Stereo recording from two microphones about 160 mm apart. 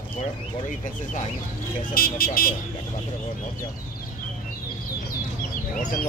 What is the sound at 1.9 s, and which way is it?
Speech, 70° left (ahead or behind).